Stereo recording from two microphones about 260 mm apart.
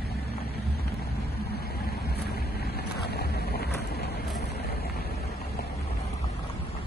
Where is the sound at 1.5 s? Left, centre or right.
Left.